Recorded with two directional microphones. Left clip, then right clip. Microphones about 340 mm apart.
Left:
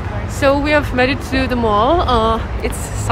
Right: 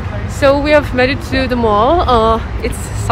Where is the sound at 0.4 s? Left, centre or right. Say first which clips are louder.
Right 4 dB; centre.